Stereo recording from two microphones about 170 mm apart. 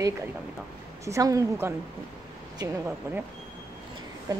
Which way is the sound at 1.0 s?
20° right (ahead or behind).